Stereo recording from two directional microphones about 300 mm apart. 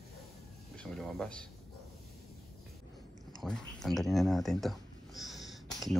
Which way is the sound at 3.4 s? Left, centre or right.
Centre.